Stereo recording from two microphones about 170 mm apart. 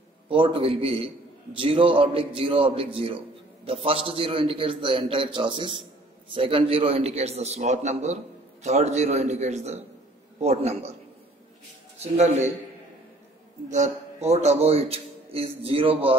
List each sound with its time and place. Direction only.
0.3 s a man's voice: 30° right (ahead or behind)
12.0 s a man's voice: 40° right (ahead or behind)
13.7 s speech: 45° right (ahead or behind)